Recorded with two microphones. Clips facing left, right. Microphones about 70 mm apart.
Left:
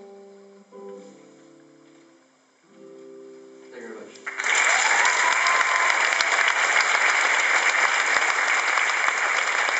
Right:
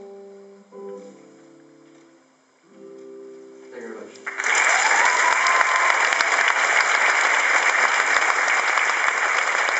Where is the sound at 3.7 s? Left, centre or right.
Centre.